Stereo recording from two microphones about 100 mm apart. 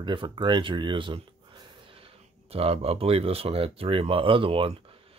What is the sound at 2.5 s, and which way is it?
Speech, 80° right.